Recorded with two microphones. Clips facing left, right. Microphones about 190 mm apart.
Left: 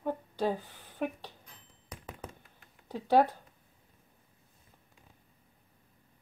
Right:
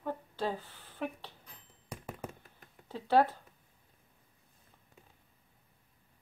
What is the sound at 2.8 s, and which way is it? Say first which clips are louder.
Speech: left 2 dB; 15° left (ahead or behind).